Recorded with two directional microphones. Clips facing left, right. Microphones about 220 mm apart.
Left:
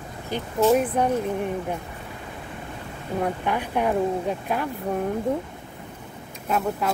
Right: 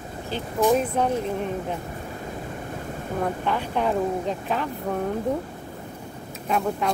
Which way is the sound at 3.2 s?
10° left (ahead or behind).